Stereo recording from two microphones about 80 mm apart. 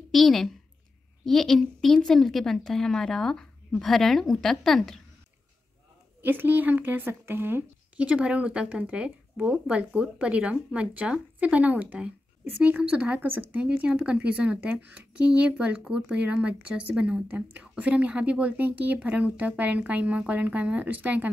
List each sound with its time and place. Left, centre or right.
0.1 s a woman's voice: centre
6.2 s a woman's voice: right
8.0 s a woman's voice: centre